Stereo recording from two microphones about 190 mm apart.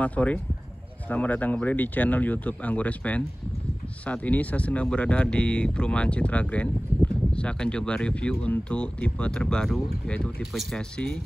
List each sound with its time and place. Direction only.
0.0 s speech: 10° left (ahead or behind)